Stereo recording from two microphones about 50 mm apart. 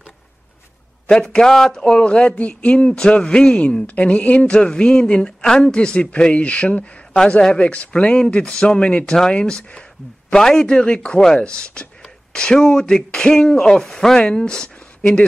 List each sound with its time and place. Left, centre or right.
1.1 s a woman's voice: centre